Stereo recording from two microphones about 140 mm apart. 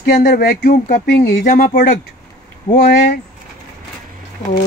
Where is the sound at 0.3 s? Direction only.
90° left.